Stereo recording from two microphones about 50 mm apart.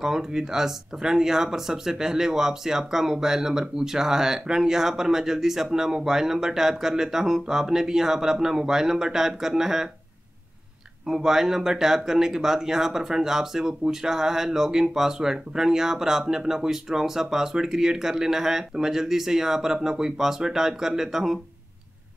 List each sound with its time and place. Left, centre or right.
0.0 s speech: centre
11.1 s speech: centre